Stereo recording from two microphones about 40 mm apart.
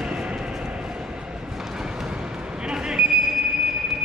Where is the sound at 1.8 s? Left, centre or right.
Centre.